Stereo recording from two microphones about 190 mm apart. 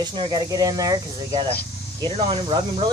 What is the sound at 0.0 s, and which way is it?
Speech, 25° right (ahead or behind).